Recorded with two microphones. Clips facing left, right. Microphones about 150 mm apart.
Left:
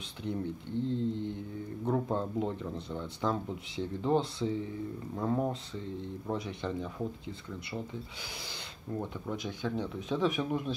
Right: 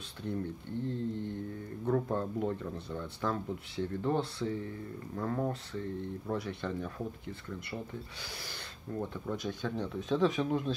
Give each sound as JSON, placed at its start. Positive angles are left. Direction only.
{"t": 0.2, "sound": "speech", "side_deg": 20}
{"t": 8.9, "sound": "speech", "side_deg": 15}